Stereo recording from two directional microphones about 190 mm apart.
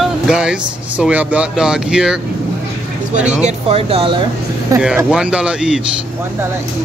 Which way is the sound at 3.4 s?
30° right (ahead or behind).